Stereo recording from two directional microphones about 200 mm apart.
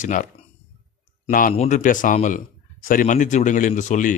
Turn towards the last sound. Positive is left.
turn(degrees=40)  # may be behind; listen again after turning